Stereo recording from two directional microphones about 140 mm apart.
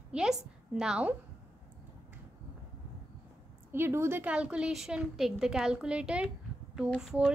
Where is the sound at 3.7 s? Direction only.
20° right (ahead or behind).